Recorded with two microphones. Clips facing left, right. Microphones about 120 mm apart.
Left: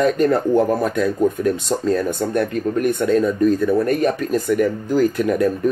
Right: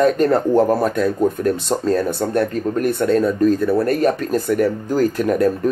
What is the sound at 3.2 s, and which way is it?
Speech, centre (ahead or behind).